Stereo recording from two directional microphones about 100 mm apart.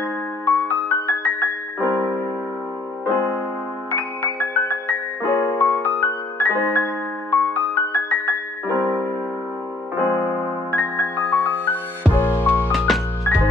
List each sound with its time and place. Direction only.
0.5 s music: 20° left (ahead or behind)
1.9 s music: 20° right (ahead or behind)
3.9 s music: 15° left (ahead or behind)
8.7 s music: 20° right (ahead or behind)
10.0 s music: 20° right (ahead or behind)
10.7 s music: 15° left (ahead or behind)
12.7 s music: centre (ahead or behind)